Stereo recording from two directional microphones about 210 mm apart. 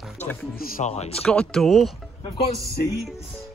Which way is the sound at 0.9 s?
30° left (ahead or behind).